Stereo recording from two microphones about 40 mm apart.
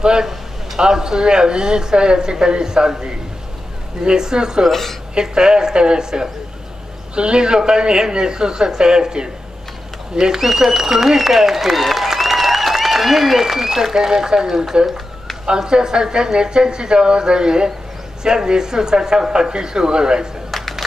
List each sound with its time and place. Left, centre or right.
0.0 s a woman's voice: centre
4.6 s a woman's voice: centre
5.1 s a woman's voice: centre
20.5 s a sound: centre